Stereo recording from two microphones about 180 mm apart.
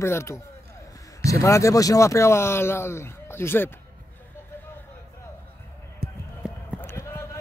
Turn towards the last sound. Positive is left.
turn(degrees=15)  # may be behind; listen again after turning